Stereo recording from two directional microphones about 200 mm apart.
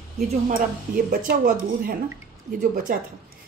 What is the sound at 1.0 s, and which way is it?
A woman's voice, 45° right (ahead or behind).